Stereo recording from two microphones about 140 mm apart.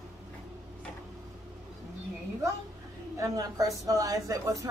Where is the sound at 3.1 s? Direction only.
25° right (ahead or behind).